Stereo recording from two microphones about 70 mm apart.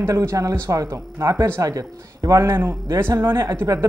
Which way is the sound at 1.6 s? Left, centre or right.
Right.